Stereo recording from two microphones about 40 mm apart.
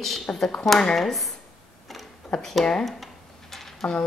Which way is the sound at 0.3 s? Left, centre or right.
Left.